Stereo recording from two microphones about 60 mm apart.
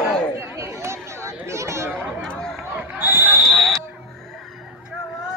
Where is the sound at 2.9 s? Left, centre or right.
Right.